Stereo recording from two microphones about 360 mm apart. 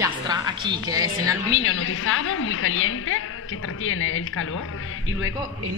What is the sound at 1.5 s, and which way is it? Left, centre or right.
A woman's voice, left.